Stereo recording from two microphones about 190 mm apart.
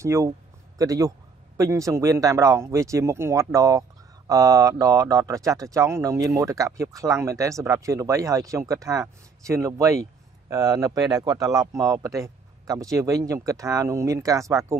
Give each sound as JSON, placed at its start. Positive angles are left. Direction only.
{"t": 0.0, "sound": "speech", "side_deg": -15}